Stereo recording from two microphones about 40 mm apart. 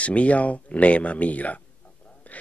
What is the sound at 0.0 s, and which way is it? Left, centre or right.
Speech, left.